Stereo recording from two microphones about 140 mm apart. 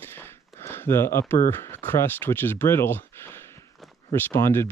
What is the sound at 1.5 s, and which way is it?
Speech, 15° left (ahead or behind).